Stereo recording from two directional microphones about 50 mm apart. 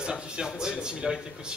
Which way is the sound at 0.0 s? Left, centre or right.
Centre.